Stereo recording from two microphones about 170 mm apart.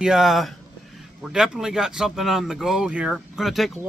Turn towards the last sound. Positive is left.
turn(degrees=0)  # may be behind; listen again after turning